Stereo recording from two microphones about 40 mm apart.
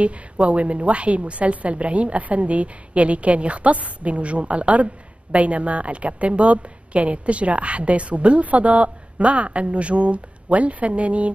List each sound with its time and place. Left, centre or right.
0.0 s a woman's voice: right